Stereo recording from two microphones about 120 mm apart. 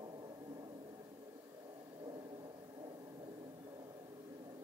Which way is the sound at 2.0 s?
40° right (ahead or behind).